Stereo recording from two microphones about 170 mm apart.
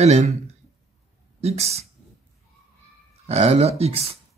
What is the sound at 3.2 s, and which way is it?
Speech, 40° right (ahead or behind).